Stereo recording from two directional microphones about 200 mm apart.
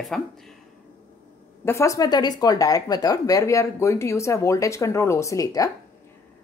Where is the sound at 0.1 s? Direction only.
Centre (ahead or behind).